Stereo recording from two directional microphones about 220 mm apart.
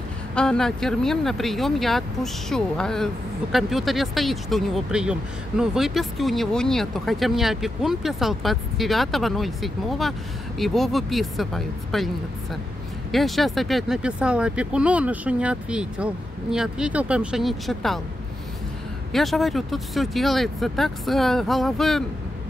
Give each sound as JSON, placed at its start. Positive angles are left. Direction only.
{"t": 0.3, "sound": "speech", "side_deg": 5}
{"t": 13.1, "sound": "speech", "side_deg": 0}
{"t": 19.1, "sound": "speech", "side_deg": 0}